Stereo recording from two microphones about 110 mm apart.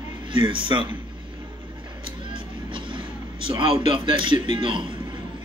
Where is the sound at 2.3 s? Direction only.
50° right (ahead or behind).